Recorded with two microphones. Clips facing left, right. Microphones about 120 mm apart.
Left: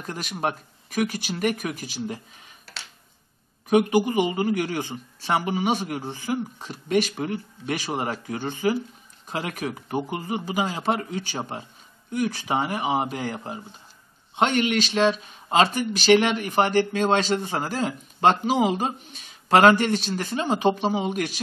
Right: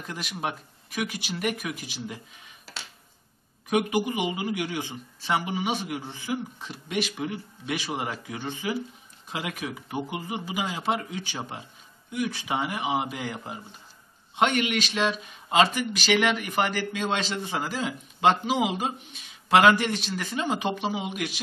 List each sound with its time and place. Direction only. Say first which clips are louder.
0.0 s speech: left 4 dB; 40° left (ahead or behind)
3.7 s speech: left 6 dB; 35° left (ahead or behind)